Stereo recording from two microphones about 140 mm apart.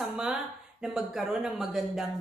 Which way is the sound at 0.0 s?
5° right (ahead or behind).